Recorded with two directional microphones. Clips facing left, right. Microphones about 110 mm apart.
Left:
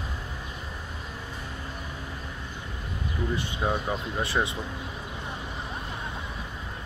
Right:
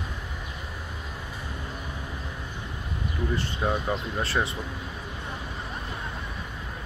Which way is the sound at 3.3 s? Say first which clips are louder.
Right 1 dB; 15° left (ahead or behind).